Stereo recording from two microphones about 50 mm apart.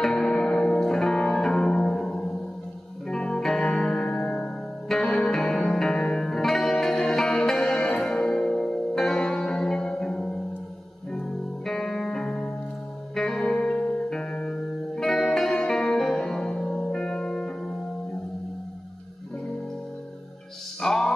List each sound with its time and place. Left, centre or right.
0.0 s music: centre
20.8 s music: centre